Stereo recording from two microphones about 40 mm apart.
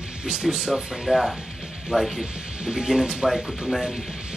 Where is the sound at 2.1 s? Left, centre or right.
Centre.